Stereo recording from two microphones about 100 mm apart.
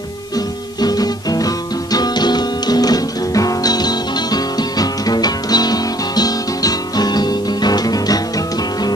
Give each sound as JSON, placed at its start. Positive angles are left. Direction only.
{"t": 0.7, "sound": "music", "side_deg": 40}